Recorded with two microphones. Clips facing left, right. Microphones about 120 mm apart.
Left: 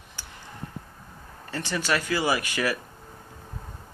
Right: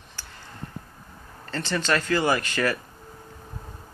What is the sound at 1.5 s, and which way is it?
Speech, 15° left (ahead or behind).